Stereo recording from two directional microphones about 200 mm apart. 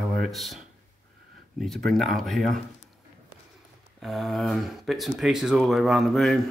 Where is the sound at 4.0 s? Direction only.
Centre (ahead or behind).